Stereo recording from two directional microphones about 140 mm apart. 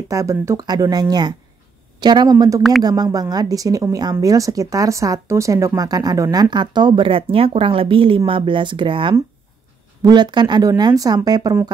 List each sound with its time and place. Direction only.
0.1 s a woman's voice: 20° right (ahead or behind)